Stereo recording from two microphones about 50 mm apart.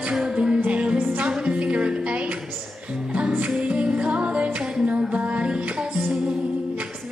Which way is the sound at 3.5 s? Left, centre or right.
Right.